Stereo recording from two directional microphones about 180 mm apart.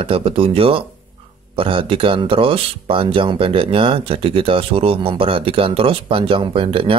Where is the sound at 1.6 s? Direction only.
30° right (ahead or behind).